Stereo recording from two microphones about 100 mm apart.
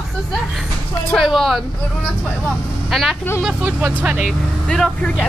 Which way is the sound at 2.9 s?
Centre (ahead or behind).